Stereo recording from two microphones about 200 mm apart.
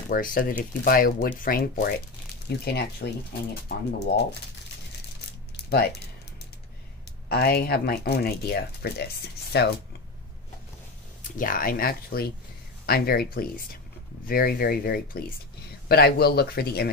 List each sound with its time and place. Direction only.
0.1 s speech: 45° left (ahead or behind)
7.2 s speech: 50° left (ahead or behind)
11.3 s speech: 45° left (ahead or behind)